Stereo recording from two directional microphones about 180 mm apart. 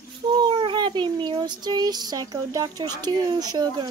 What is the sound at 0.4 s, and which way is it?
Child singing, 25° right (ahead or behind).